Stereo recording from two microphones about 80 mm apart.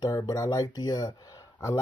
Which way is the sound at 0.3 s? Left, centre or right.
Left.